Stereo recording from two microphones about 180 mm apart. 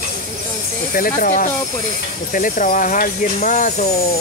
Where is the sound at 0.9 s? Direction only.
50° left (ahead or behind).